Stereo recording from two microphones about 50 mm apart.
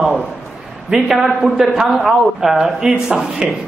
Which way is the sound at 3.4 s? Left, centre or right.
Right.